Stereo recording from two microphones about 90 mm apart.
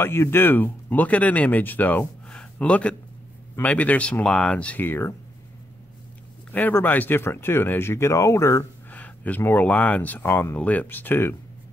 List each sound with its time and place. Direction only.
0.0 s speech: 25° left (ahead or behind)
6.5 s speech: 20° left (ahead or behind)
8.9 s speech: 15° left (ahead or behind)